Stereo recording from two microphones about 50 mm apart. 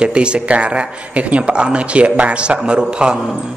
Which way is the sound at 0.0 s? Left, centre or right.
Centre.